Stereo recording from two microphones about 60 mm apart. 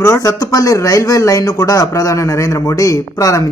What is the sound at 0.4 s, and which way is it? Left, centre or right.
Speech, left.